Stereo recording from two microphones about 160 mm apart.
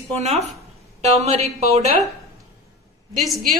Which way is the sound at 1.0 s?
45° right (ahead or behind).